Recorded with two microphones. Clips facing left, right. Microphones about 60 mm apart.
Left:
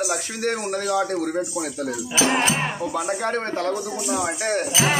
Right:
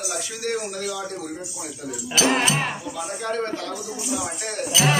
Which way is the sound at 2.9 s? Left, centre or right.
Left.